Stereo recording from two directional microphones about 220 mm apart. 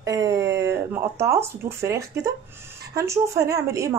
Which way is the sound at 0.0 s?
15° right (ahead or behind).